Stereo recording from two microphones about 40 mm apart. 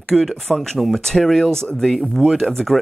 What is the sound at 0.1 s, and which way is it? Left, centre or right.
Speech, centre.